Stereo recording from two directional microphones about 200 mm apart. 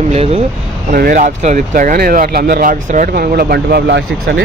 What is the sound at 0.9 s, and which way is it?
Speech, 45° right (ahead or behind).